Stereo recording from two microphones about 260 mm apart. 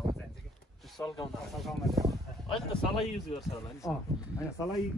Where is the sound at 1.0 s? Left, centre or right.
Centre.